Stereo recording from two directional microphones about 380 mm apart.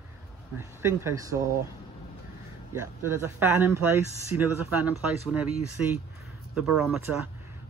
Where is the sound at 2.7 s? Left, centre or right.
Centre.